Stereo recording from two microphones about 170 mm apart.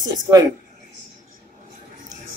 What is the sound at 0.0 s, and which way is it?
Speech, 25° right (ahead or behind).